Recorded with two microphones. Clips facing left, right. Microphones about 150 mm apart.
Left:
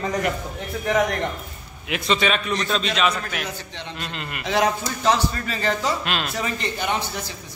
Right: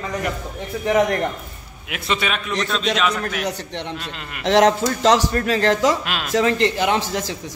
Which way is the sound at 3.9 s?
Centre (ahead or behind).